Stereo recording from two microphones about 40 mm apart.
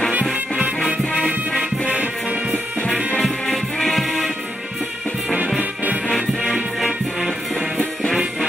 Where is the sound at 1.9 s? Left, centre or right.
Right.